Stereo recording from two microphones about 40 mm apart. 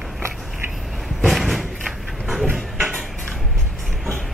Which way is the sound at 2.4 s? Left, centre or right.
Right.